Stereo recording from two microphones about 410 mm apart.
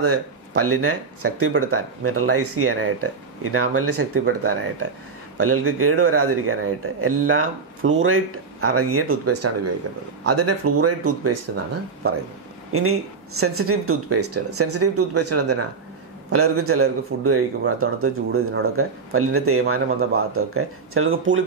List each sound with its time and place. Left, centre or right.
0.0 s speech: right
12.7 s speech: right